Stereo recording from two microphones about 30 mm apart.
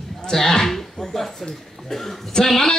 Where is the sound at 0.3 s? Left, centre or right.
Centre.